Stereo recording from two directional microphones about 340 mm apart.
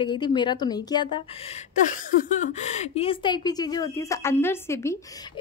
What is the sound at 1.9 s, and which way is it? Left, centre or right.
A woman's voice, left.